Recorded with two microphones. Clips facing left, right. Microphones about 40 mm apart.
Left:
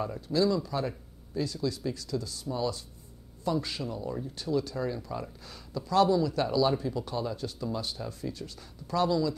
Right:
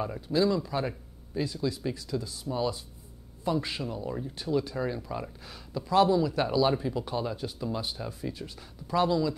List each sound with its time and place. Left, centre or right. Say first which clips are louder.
0.0 s speech: right 1 dB; right